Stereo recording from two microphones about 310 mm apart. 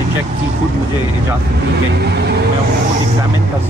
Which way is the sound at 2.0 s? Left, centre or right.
Right.